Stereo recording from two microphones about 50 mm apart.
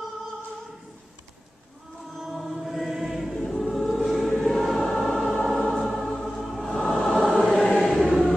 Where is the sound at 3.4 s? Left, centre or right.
Centre.